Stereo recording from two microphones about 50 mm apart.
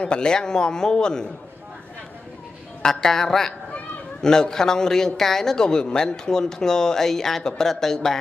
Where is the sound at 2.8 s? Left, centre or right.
Centre.